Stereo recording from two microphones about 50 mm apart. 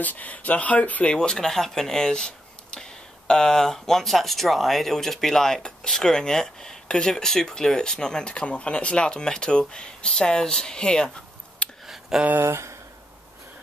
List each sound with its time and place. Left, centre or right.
0.0 s speech: left
1.0 s speech: centre
11.8 s a sound: centre
12.4 s speech: right